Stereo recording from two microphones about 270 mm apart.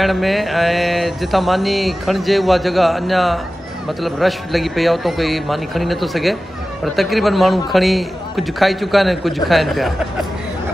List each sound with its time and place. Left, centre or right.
0.0 s mantra: centre